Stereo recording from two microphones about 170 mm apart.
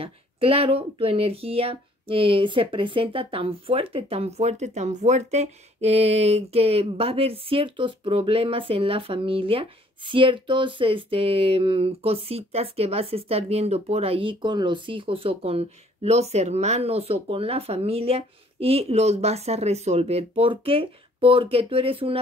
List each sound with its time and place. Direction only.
0.0 s speech: 35° right (ahead or behind)